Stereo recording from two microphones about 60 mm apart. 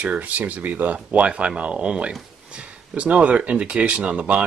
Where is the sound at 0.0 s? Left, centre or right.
Right.